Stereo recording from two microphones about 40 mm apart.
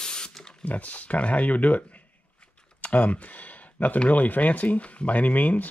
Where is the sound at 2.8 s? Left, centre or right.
Left.